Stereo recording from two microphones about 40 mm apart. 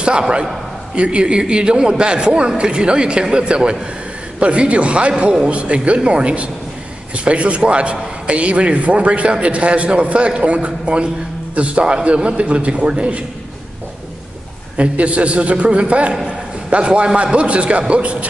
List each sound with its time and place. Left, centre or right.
0.9 s a man's voice: right
14.8 s a man's voice: right